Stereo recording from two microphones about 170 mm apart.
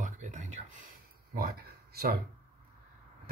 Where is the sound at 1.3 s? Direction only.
65° right (ahead or behind).